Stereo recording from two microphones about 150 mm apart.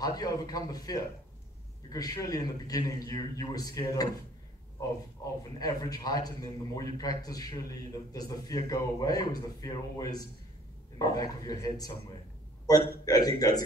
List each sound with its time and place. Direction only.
0.0 s a man's voice: 25° left (ahead or behind)
5.2 s a man's voice: 25° left (ahead or behind)
13.0 s a man's voice: 25° left (ahead or behind)